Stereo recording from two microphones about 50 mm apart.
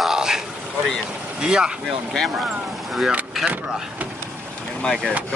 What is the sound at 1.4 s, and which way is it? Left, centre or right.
Speech, centre.